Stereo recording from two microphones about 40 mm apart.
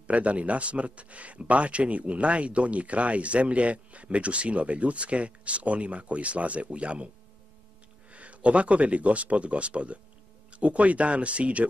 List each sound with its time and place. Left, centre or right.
0.0 s speech: right
8.1 s speech: right